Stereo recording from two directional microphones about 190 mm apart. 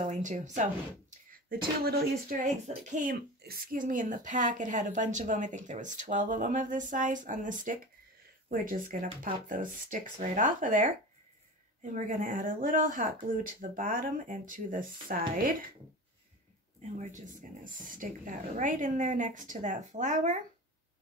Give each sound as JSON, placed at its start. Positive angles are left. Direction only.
{"t": 0.0, "sound": "speech", "side_deg": -40}
{"t": 1.8, "sound": "speech", "side_deg": -50}
{"t": 17.0, "sound": "speech", "side_deg": -40}